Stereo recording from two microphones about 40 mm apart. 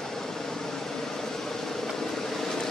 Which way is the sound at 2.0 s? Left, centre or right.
Centre.